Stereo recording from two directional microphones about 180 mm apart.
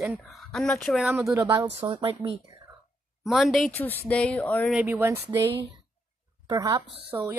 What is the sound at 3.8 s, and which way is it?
Speech, 10° left (ahead or behind).